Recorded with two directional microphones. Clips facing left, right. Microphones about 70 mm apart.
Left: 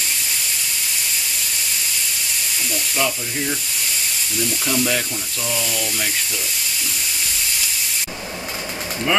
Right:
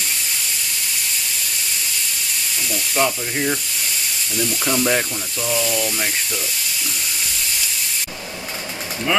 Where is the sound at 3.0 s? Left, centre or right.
Right.